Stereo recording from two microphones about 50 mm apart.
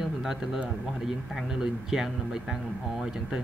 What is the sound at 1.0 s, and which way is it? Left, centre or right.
Speech, centre.